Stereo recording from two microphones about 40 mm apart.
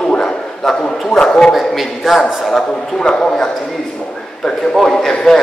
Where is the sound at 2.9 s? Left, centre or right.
Centre.